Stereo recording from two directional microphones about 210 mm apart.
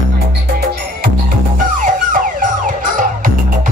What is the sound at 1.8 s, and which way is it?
Emergency vehicle, 40° right (ahead or behind).